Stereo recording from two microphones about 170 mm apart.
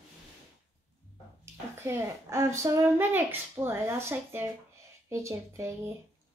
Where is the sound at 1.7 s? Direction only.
15° right (ahead or behind).